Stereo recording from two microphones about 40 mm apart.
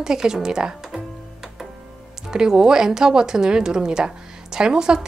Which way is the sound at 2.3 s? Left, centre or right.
Centre.